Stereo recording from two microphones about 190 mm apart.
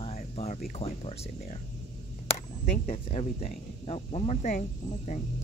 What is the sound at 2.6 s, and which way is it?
Speech, 35° left (ahead or behind).